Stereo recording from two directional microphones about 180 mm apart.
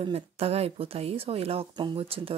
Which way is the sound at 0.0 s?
35° right (ahead or behind).